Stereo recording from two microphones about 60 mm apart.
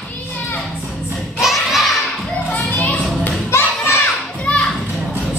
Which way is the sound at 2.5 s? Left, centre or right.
Left.